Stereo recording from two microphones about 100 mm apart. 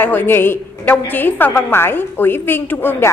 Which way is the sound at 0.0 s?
20° left (ahead or behind).